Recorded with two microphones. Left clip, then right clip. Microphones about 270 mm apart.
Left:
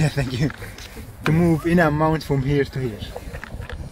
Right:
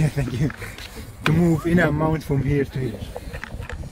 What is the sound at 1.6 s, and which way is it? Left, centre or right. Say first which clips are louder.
Speech: left 2 dB; left.